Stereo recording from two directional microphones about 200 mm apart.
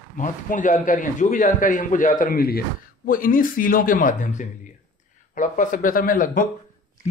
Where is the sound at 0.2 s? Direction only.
40° left (ahead or behind).